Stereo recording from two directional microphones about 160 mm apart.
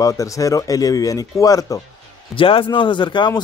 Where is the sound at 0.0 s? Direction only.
20° left (ahead or behind).